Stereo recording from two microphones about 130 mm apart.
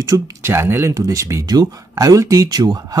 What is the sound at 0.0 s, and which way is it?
Speech, 20° right (ahead or behind).